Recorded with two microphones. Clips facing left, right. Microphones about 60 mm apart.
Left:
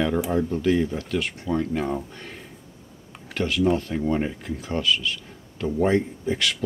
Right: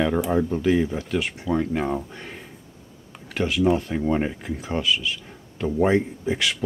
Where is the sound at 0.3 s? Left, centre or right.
Centre.